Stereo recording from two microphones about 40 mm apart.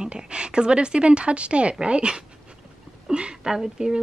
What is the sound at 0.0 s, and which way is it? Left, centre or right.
A woman's voice, right.